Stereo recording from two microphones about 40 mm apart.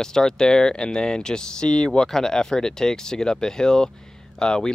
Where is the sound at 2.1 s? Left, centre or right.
Centre.